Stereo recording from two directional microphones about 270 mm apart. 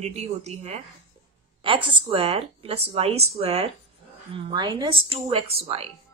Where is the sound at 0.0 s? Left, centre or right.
Right.